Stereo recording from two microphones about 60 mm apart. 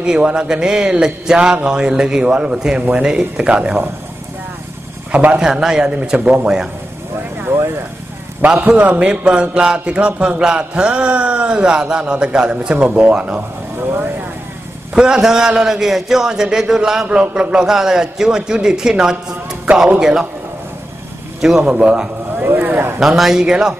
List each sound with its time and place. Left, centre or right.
0.0 s a man's voice: centre
5.1 s a man's voice: right
5.4 s a man's voice: centre
8.5 s a man's voice: right
15.0 s a man's voice: centre
21.4 s a man's voice: centre
21.6 s a man's voice: centre
22.4 s speech: right
22.9 s a man's voice: centre